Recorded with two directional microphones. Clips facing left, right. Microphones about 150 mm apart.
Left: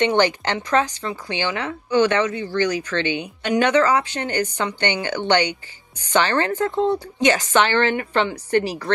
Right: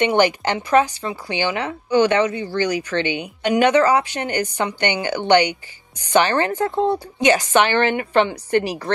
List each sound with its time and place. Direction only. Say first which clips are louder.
0.0 s speech: right 1 dB; 10° right (ahead or behind)